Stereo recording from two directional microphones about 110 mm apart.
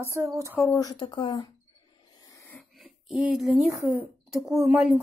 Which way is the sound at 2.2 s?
30° left (ahead or behind).